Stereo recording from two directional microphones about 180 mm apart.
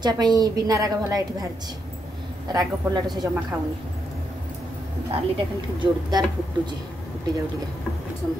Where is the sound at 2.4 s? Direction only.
25° right (ahead or behind).